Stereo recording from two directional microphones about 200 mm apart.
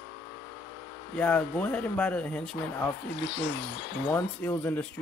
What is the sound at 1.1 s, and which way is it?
Speech, 5° left (ahead or behind).